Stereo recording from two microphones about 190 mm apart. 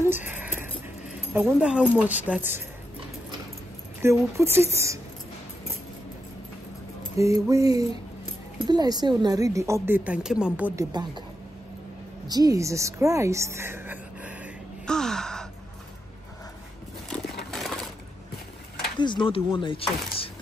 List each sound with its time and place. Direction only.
0.3 s a sound: 10° right (ahead or behind)
1.3 s a woman's voice: 5° right (ahead or behind)
4.0 s a woman's voice: 15° right (ahead or behind)
7.2 s a woman's voice: 15° right (ahead or behind)
10.8 s a woman's voice: 20° right (ahead or behind)
12.3 s a woman's voice: 20° right (ahead or behind)
14.9 s gasp: centre (ahead or behind)
17.5 s coin: centre (ahead or behind)
18.9 s speech: 25° left (ahead or behind)